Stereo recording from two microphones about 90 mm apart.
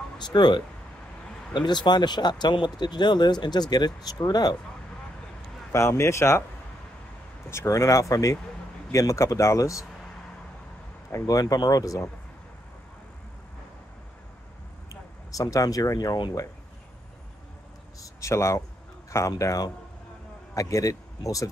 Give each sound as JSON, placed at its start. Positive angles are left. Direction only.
{"t": 0.2, "sound": "speech", "side_deg": 55}
{"t": 5.7, "sound": "speech", "side_deg": 30}
{"t": 7.5, "sound": "speech", "side_deg": 35}
{"t": 11.1, "sound": "speech", "side_deg": 35}
{"t": 14.9, "sound": "speech", "side_deg": 40}
{"t": 18.0, "sound": "speech", "side_deg": 35}